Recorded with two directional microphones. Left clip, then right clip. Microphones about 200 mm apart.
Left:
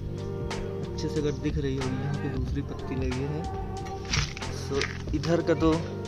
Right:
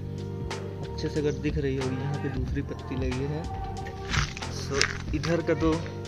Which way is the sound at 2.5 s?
15° left (ahead or behind).